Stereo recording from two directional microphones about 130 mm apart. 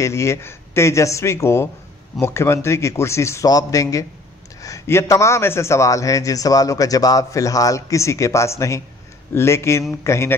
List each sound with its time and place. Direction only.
0.0 s a man's voice: 20° left (ahead or behind)